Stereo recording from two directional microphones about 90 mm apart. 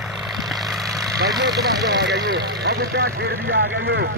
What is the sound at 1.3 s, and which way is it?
Vehicle, 45° right (ahead or behind).